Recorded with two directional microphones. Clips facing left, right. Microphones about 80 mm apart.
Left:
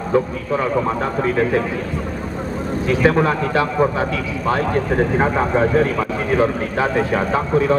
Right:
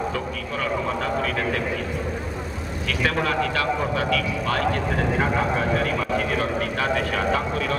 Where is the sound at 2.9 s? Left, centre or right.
Left.